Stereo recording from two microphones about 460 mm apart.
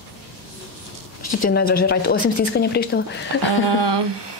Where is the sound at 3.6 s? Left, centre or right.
Right.